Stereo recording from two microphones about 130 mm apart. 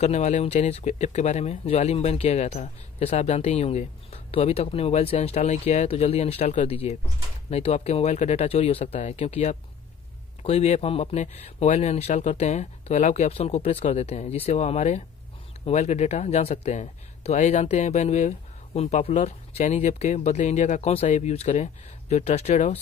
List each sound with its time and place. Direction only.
0.0 s speech: 60° left (ahead or behind)
21.1 s speech: 55° left (ahead or behind)